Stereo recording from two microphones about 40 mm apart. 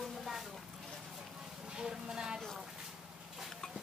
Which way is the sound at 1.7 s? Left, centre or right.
Centre.